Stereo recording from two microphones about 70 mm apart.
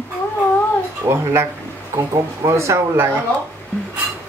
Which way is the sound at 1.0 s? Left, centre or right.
Right.